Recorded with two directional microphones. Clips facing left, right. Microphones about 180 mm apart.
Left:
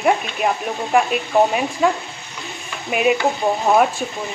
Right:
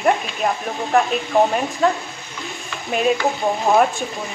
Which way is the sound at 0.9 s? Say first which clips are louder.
Even; 10° left (ahead or behind).